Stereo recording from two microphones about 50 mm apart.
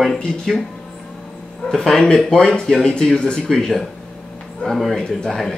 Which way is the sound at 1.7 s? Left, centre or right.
Centre.